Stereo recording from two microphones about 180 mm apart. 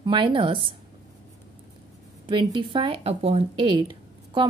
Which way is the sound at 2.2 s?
25° right (ahead or behind).